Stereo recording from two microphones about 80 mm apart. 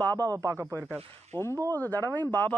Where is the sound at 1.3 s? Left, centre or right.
Left.